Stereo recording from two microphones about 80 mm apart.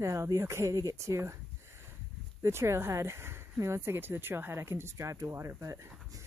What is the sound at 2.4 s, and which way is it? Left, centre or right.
Speech, right.